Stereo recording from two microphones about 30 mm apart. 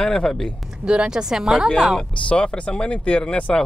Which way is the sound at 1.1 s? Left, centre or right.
Centre.